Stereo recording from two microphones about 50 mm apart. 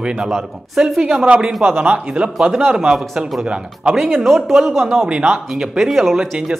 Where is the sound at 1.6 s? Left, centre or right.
Right.